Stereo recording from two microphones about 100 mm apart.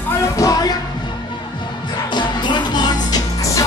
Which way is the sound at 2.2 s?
50° left (ahead or behind).